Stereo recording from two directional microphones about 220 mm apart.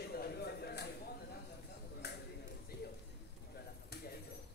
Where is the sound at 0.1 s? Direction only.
45° left (ahead or behind).